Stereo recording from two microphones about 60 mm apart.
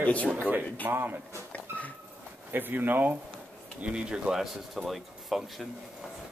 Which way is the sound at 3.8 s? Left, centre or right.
Centre.